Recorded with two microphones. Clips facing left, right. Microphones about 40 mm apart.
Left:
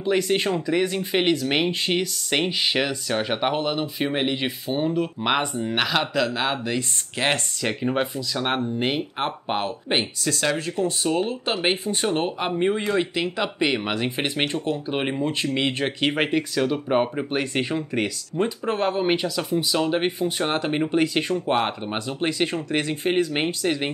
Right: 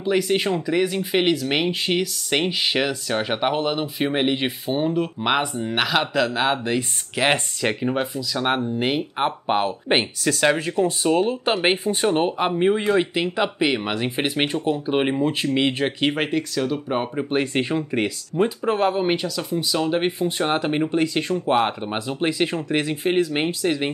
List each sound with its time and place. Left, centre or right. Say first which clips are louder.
0.0 s speech: right 1 dB; centre
7.2 s speech: right 3 dB; centre
7.9 s speech: even; centre
8.4 s speech: right 2 dB; centre
11.1 s speech: right 4 dB; centre
17.4 s speech: right 3 dB; centre